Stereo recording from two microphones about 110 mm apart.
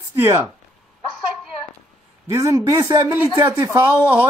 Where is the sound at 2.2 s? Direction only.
25° right (ahead or behind).